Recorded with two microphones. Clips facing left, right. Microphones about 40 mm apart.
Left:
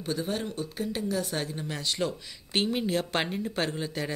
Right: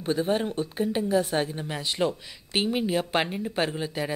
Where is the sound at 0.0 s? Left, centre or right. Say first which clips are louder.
Right 6 dB; right.